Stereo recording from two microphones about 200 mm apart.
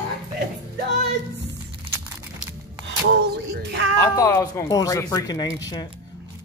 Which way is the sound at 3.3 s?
60° right (ahead or behind).